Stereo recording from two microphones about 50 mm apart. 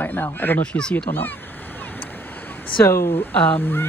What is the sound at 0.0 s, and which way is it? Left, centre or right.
Speech, left.